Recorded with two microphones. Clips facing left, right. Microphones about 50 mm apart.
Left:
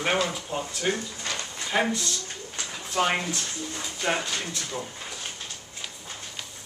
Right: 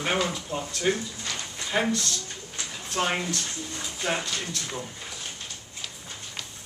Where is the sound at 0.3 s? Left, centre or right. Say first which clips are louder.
Even; centre.